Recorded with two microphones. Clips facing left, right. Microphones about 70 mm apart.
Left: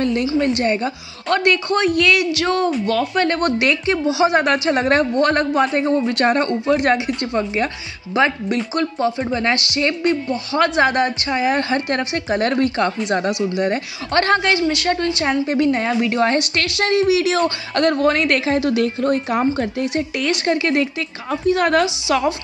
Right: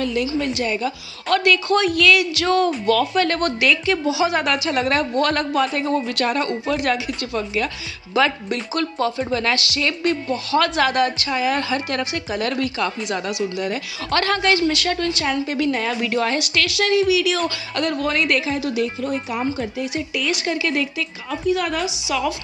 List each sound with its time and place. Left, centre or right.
0.0 s a woman's voice: left
1.3 s a woman's voice: left
16.2 s a woman's voice: left
21.5 s speech: left